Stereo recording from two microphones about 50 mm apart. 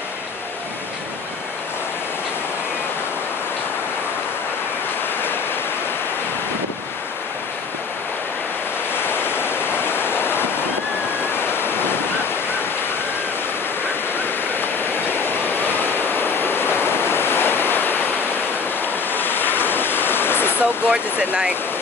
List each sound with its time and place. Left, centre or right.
8.9 s waves: left
11.5 s waves: left
15.2 s waves: left
19.1 s waves: left
20.5 s speech: right